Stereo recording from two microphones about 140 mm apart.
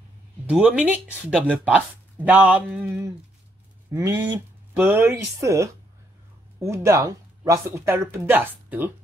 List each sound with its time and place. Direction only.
0.5 s speech: 10° right (ahead or behind)
3.9 s speech: 20° right (ahead or behind)